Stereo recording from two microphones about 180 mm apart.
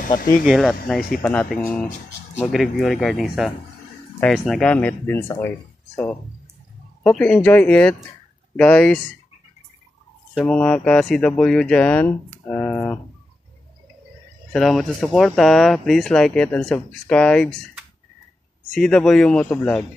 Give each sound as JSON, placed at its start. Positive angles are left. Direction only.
{"t": 0.0, "sound": "speech", "side_deg": 50}
{"t": 0.5, "sound": "speech", "side_deg": 0}
{"t": 7.0, "sound": "speech", "side_deg": 5}
{"t": 10.3, "sound": "speech", "side_deg": 5}
{"t": 14.5, "sound": "speech", "side_deg": 0}